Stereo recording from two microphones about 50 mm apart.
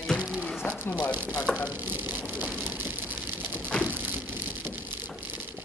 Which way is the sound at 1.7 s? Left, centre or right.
Right.